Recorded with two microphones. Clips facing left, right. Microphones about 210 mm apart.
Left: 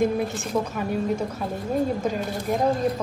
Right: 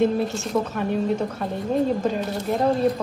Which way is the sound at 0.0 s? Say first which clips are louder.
Right 2 dB; 15° left (ahead or behind).